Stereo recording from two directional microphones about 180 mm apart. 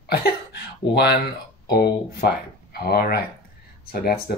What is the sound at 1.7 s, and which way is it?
Speech, 60° left (ahead or behind).